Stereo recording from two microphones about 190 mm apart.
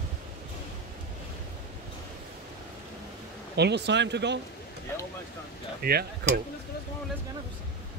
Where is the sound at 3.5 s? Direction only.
60° right (ahead or behind).